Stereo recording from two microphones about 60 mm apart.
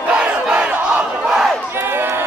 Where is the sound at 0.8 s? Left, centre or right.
Centre.